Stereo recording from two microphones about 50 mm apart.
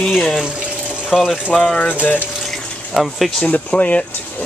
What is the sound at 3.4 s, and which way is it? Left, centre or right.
Speech, left.